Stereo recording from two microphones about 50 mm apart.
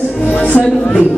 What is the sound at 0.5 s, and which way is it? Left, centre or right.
Speech, left.